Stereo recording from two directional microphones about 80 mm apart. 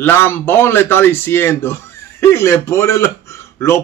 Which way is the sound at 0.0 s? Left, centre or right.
Left.